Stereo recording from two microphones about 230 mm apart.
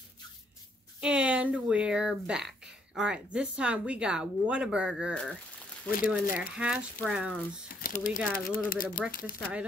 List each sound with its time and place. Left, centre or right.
1.0 s speech: centre
5.9 s speech: left
6.4 s speech: centre
7.8 s speech: left
9.2 s speech: centre